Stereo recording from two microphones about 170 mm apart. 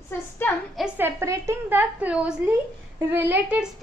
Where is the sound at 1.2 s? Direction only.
15° right (ahead or behind).